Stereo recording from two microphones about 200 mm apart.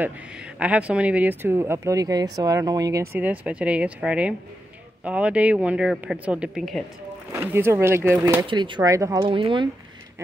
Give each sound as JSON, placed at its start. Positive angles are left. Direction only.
{"t": 0.6, "sound": "speech", "side_deg": -5}
{"t": 7.3, "sound": "speech", "side_deg": -10}